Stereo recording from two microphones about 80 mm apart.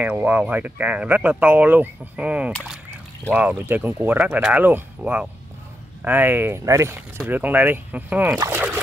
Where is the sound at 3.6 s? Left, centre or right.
Right.